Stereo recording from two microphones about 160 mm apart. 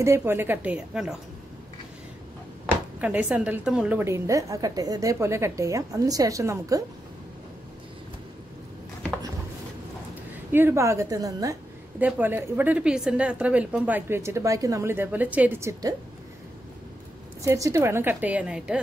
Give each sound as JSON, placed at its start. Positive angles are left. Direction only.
{"t": 0.0, "sound": "a woman's voice", "side_deg": -15}
{"t": 3.0, "sound": "a woman's voice", "side_deg": -10}
{"t": 10.5, "sound": "a woman's voice", "side_deg": -15}
{"t": 17.4, "sound": "a woman's voice", "side_deg": -20}